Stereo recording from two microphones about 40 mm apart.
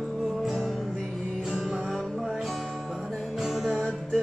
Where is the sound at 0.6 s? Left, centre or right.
Centre.